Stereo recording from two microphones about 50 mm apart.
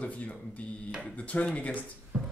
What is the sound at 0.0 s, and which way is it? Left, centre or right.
Speech, left.